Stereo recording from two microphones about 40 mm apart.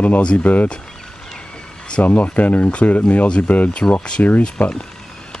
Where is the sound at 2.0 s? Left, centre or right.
Left.